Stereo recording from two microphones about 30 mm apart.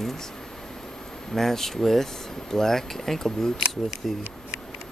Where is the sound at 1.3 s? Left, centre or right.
Centre.